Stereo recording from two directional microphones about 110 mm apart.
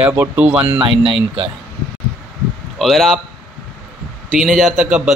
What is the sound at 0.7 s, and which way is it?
Speech, 55° right (ahead or behind).